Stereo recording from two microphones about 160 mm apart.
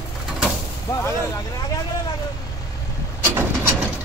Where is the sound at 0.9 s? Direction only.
20° left (ahead or behind).